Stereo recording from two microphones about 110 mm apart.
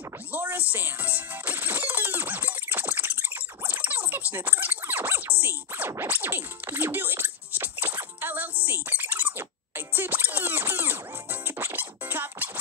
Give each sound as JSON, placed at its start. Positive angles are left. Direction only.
{"t": 0.3, "sound": "music", "side_deg": -15}
{"t": 4.3, "sound": "a sound", "side_deg": -20}
{"t": 5.4, "sound": "music", "side_deg": -20}
{"t": 8.6, "sound": "rodents", "side_deg": -20}
{"t": 11.4, "sound": "music", "side_deg": -20}